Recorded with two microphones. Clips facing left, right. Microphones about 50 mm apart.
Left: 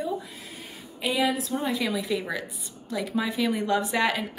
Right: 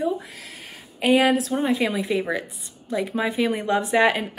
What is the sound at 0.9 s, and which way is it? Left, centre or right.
Speech, right.